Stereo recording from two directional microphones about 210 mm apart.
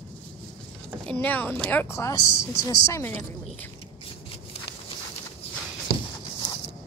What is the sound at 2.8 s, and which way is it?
Speech, 10° left (ahead or behind).